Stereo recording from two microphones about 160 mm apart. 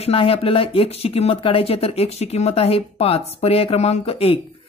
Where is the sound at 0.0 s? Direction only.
35° left (ahead or behind).